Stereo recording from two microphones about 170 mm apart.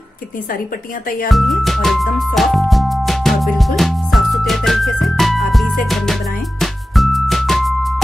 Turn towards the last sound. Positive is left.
turn(degrees=0)  # may be behind; listen again after turning